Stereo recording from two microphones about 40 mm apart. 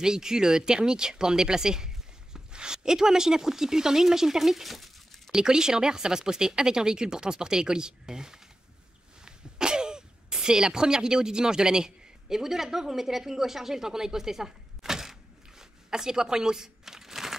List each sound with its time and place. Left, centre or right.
0.0 s speech: centre
5.3 s speech: centre
9.2 s a sound: centre